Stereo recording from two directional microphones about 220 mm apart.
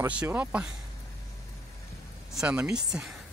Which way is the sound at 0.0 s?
5° right (ahead or behind).